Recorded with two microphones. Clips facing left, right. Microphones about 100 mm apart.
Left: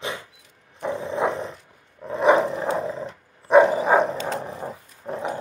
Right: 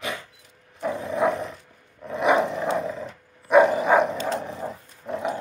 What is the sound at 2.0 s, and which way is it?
Dog, 30° left (ahead or behind).